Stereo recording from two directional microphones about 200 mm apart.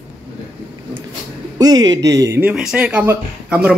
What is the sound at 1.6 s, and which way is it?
Speech, 20° right (ahead or behind).